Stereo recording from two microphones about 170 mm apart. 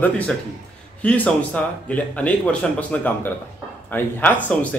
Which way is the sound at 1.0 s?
10° left (ahead or behind).